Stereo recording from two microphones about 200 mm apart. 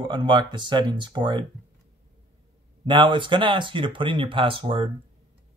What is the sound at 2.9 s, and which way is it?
Speech, 25° right (ahead or behind).